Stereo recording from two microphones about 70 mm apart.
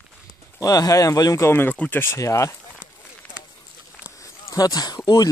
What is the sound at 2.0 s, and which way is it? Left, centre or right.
Speech, left.